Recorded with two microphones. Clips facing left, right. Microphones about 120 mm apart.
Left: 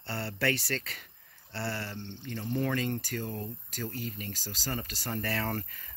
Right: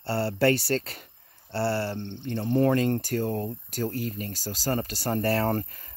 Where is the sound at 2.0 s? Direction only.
55° right (ahead or behind); by 5.9 s 35° right (ahead or behind).